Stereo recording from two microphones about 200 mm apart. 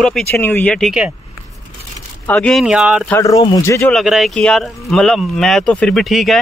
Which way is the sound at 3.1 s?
15° left (ahead or behind).